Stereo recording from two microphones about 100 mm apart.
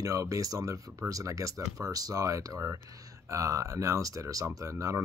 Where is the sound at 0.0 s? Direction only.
35° right (ahead or behind).